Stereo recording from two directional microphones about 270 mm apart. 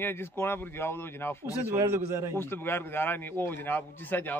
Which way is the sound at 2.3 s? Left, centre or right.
Centre.